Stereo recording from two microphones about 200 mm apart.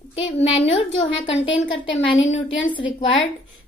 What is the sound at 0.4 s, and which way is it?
A woman's voice, 30° left (ahead or behind).